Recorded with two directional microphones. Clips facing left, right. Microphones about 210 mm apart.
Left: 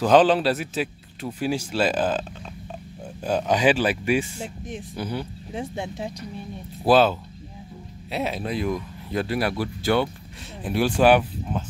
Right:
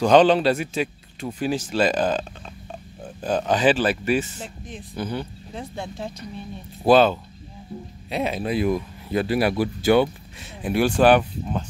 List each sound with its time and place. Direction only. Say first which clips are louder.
0.0 s a man's voice: right 2 dB; 5° left (ahead or behind)
5.6 s a man's voice: left 2 dB; 20° left (ahead or behind); by 9.5 s 5° right (ahead or behind)
9.5 s speech: right 4 dB; 15° right (ahead or behind)
10.6 s speech: right 2 dB; centre (ahead or behind)